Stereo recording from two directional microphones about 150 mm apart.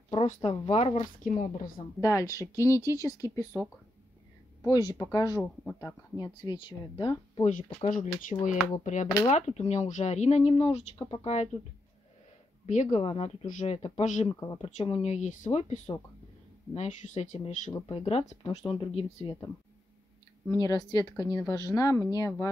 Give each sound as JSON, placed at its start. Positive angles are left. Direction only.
{"t": 0.1, "sound": "speech", "side_deg": 40}
{"t": 2.0, "sound": "speech", "side_deg": 20}
{"t": 4.6, "sound": "speech", "side_deg": 25}
{"t": 7.4, "sound": "speech", "side_deg": 55}
{"t": 12.6, "sound": "speech", "side_deg": 55}
{"t": 13.0, "sound": "speech", "side_deg": 40}
{"t": 14.2, "sound": "speech", "side_deg": 25}
{"t": 14.6, "sound": "speech", "side_deg": 50}
{"t": 17.8, "sound": "speech", "side_deg": 40}
{"t": 20.6, "sound": "speech", "side_deg": 25}